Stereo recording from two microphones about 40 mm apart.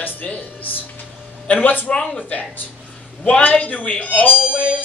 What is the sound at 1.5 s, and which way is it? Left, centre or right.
Speech, left.